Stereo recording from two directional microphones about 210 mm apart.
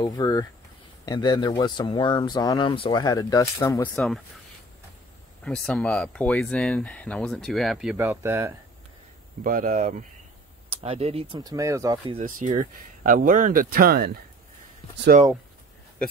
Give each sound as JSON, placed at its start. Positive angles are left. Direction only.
{"t": 0.0, "sound": "speech", "side_deg": 20}
{"t": 3.9, "sound": "speech", "side_deg": 0}
{"t": 5.4, "sound": "speech", "side_deg": 5}
{"t": 8.0, "sound": "speech", "side_deg": -15}
{"t": 9.4, "sound": "speech", "side_deg": -40}
{"t": 12.4, "sound": "speech", "side_deg": -40}
{"t": 15.1, "sound": "speech", "side_deg": -40}